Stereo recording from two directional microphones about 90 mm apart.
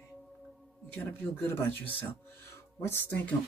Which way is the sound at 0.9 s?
25° left (ahead or behind).